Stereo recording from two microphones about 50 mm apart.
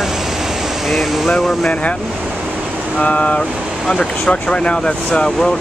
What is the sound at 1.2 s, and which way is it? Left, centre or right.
Speech, centre.